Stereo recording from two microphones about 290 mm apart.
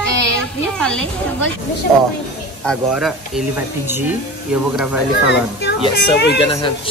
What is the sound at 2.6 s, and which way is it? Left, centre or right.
Speech, centre.